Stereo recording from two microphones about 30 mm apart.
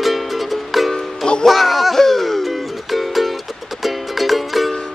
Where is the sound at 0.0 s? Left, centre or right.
Centre.